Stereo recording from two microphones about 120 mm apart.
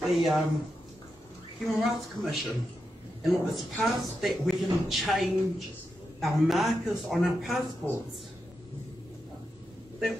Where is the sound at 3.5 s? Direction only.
Centre (ahead or behind).